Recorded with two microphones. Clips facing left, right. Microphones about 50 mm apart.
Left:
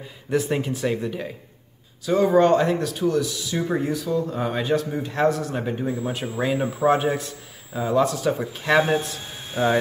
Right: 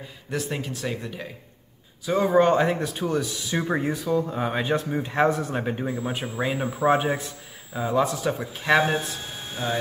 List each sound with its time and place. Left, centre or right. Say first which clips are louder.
0.3 s speech: left 6 dB; centre
2.0 s speech: left 2 dB; centre; by 5.6 s right
5.6 s a man's voice: left 1 dB; centre
9.6 s speech: left 8 dB; left